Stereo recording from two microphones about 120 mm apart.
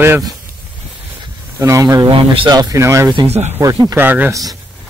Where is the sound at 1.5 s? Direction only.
25° right (ahead or behind).